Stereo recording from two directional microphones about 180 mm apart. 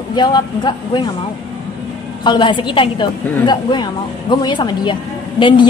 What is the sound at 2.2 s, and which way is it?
A woman's voice, 25° left (ahead or behind).